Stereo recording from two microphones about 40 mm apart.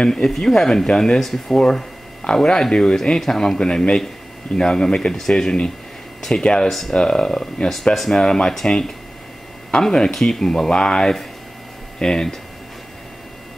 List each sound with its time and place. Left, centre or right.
0.0 s speech: centre
1.2 s speech: centre
1.6 s speech: left